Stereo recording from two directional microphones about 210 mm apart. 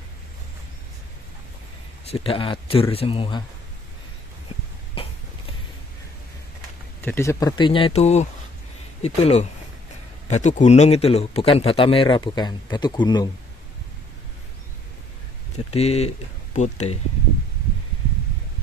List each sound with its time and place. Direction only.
2.0 s speech: 25° left (ahead or behind)
5.0 s cough: 25° left (ahead or behind)
7.0 s speech: 10° left (ahead or behind)
15.5 s speech: 30° left (ahead or behind)